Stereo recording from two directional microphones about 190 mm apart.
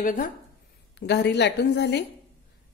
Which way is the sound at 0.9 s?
60° left (ahead or behind).